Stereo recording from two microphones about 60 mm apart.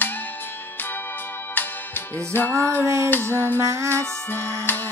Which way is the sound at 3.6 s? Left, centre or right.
Right.